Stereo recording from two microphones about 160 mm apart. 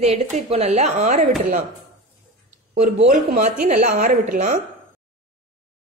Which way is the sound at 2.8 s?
50° right (ahead or behind).